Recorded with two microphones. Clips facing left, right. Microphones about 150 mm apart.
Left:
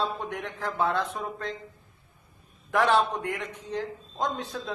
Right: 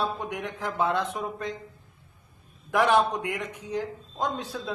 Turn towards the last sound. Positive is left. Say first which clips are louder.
# even
turn(degrees=-5)  # may be behind; listen again after turning